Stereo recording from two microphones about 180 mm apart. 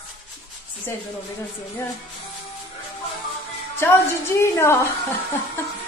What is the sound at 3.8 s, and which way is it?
A woman's voice, 15° left (ahead or behind).